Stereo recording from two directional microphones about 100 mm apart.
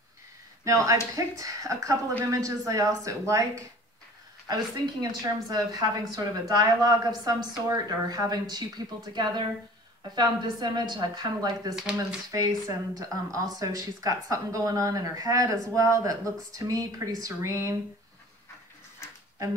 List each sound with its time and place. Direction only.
0.7 s speech: 30° right (ahead or behind)
5.2 s a woman's voice: 40° right (ahead or behind)
11.7 s speech: 5° right (ahead or behind)
12.3 s speech: 35° right (ahead or behind)